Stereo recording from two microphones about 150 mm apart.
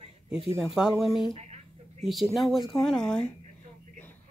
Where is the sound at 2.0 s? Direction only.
Centre (ahead or behind).